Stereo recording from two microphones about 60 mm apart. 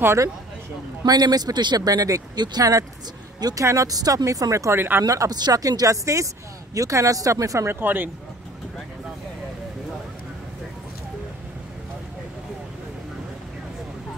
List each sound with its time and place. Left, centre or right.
0.0 s speech: right
1.0 s speech: right
3.3 s speech: right
3.6 s speech: right
4.7 s speech: right
5.0 s speech: right
7.6 s speech: right